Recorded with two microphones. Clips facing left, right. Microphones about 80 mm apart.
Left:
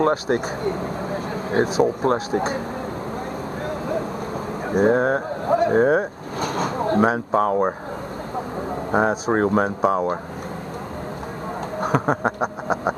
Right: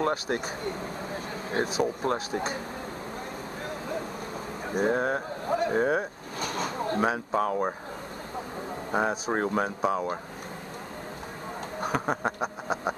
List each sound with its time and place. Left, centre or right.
0.0 s speech: left
1.8 s speech: left
4.6 s speech: left
9.3 s speech: left
11.8 s a sound: left